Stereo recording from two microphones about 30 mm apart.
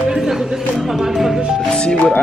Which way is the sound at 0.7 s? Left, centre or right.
Centre.